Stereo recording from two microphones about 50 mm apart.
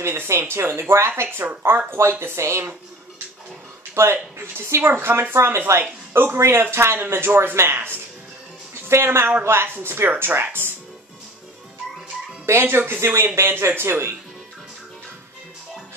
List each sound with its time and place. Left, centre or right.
0.0 s speech: right
3.9 s speech: right
4.8 s speech: right
5.3 s speech: right
5.8 s speech: right
10.0 s speech: right
12.6 s speech: right